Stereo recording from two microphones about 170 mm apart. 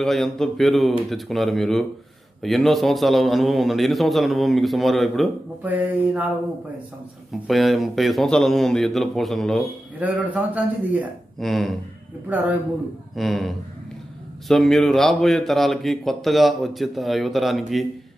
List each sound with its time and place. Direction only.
0.0 s speech: centre (ahead or behind)
5.6 s a man's voice: 10° right (ahead or behind)
7.4 s speech: centre (ahead or behind)
9.9 s a man's voice: 10° right (ahead or behind)
13.1 s speech: centre (ahead or behind)